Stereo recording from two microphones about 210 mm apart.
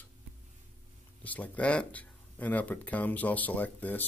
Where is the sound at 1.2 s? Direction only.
5° left (ahead or behind).